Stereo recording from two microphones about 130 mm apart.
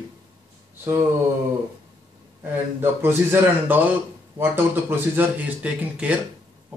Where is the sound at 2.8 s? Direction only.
20° right (ahead or behind).